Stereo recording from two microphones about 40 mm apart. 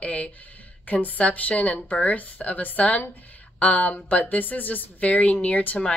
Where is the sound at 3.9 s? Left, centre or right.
Left.